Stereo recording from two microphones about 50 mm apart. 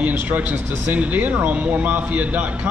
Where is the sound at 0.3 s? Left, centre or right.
Right.